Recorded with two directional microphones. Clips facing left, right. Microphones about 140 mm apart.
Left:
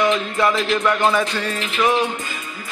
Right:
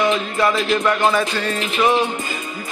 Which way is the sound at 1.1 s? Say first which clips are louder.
Right 1 dB; 15° left (ahead or behind).